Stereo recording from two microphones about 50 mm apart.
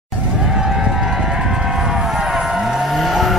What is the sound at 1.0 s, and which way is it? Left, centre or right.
Vehicle, centre.